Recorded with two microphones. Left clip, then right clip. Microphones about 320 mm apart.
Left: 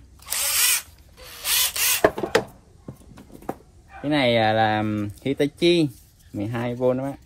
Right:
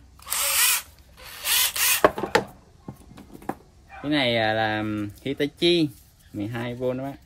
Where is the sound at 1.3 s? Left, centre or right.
Centre.